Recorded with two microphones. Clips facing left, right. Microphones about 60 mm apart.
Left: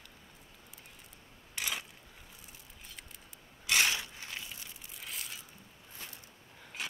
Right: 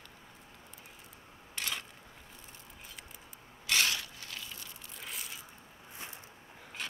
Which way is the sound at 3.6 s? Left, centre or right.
Centre.